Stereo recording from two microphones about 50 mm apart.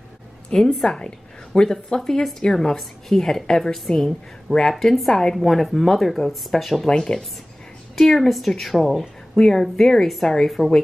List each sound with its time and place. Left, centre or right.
0.7 s a woman's voice: centre
7.0 s a woman's voice: centre